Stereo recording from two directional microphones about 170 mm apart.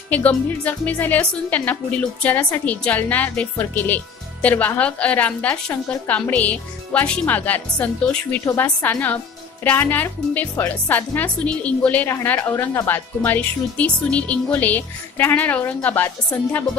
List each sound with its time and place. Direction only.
0.1 s a woman's voice: 10° left (ahead or behind)